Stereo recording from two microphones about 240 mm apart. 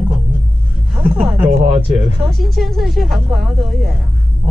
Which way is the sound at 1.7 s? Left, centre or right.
Right.